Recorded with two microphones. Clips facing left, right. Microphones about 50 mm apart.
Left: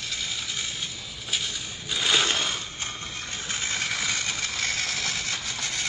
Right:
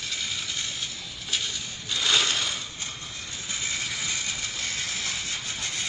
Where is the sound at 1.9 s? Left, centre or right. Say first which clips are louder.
Left 1 dB; centre.